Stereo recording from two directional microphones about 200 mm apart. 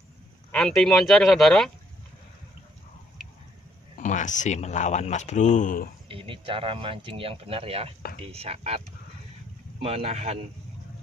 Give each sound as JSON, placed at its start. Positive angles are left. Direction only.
{"t": 0.5, "sound": "speech", "side_deg": 5}
{"t": 4.0, "sound": "speech", "side_deg": 40}
{"t": 6.0, "sound": "speech", "side_deg": -25}